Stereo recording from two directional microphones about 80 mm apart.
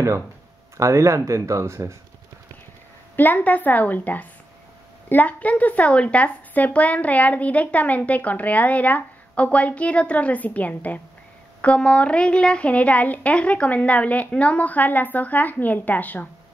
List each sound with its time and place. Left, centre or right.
0.7 s speech: right
3.2 s a child's voice: left